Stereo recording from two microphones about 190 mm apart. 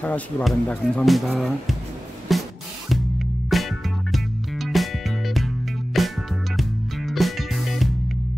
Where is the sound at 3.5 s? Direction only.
Centre (ahead or behind).